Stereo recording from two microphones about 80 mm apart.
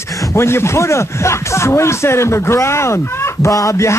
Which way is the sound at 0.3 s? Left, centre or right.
Left.